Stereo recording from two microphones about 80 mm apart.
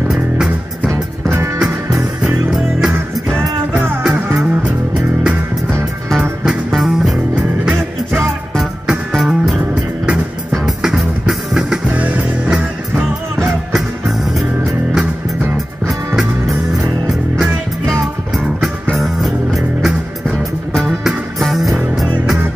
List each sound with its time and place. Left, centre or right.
2.2 s music: centre
3.7 s music: right
4.0 s music: centre
4.6 s music: centre
6.4 s music: centre
8.5 s music: centre
11.9 s music: centre
18.9 s music: centre